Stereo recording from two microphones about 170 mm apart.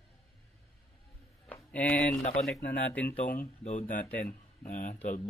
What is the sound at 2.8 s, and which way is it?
Speech, 10° left (ahead or behind).